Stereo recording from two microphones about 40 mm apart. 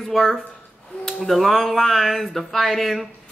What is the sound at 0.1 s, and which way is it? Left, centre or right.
Speech, centre.